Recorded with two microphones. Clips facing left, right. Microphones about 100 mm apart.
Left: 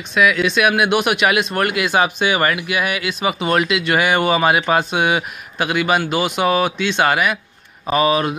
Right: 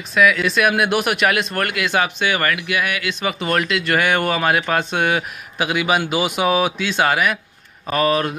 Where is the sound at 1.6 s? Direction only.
15° left (ahead or behind).